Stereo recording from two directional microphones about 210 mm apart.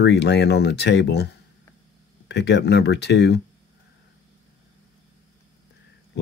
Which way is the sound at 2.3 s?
55° left (ahead or behind).